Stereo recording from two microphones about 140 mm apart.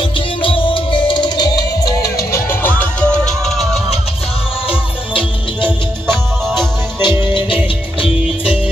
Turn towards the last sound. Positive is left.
turn(degrees=-15)  # may be behind; listen again after turning